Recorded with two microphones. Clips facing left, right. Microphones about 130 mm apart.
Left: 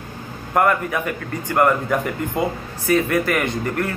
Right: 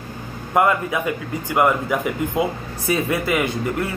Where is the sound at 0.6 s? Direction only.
15° right (ahead or behind).